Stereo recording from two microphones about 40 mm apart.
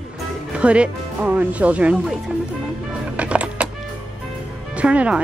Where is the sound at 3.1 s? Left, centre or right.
Right.